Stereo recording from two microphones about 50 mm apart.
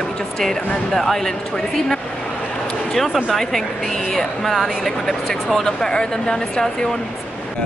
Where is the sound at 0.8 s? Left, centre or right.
Centre.